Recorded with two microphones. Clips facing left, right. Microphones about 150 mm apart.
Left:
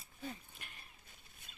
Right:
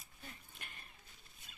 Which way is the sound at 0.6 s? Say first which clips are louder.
Right 1 dB; centre (ahead or behind).